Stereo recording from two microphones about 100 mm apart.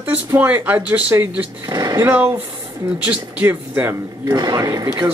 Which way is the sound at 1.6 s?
40° right (ahead or behind).